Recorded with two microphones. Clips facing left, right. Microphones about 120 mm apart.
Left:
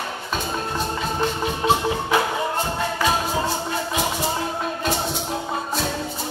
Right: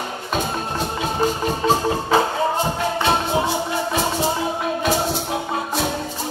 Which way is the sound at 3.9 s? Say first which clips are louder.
Right 3 dB; 30° right (ahead or behind).